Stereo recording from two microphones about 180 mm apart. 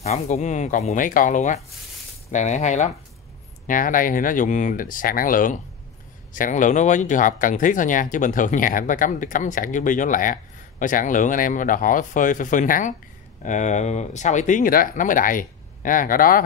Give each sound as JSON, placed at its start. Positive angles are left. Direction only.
{"t": 0.0, "sound": "speech", "side_deg": 40}